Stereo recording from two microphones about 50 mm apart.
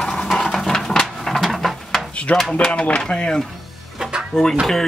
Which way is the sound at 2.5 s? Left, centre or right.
Left.